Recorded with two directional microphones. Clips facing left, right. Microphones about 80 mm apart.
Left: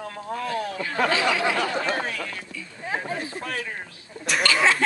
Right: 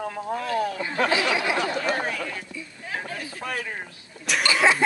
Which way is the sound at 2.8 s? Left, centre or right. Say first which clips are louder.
Left 4 dB; left.